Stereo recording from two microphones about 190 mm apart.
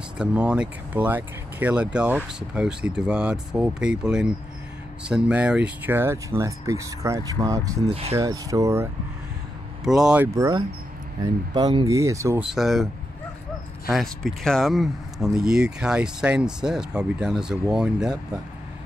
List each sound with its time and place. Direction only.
0.2 s speech: 5° right (ahead or behind)
9.8 s speech: 5° right (ahead or behind)
12.4 s speech: centre (ahead or behind)
13.9 s speech: centre (ahead or behind)